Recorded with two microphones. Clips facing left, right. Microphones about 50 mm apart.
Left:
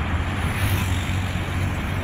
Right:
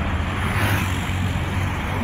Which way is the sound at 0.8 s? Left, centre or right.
Right.